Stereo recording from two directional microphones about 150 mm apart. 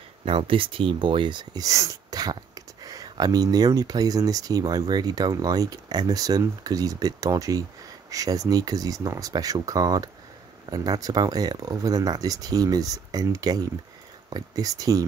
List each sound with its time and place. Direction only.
0.2 s speech: 40° right (ahead or behind)